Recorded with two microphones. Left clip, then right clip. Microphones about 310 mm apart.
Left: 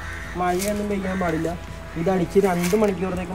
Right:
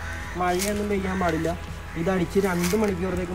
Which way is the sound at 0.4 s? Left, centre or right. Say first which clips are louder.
Left 2 dB; centre.